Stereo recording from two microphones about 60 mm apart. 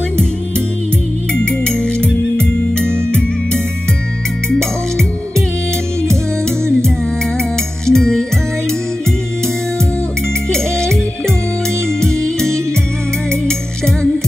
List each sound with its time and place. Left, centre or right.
2.0 s music: centre
4.5 s music: centre
7.8 s music: centre
10.5 s music: centre